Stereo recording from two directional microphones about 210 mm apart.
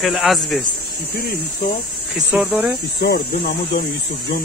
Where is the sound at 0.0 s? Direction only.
Centre (ahead or behind).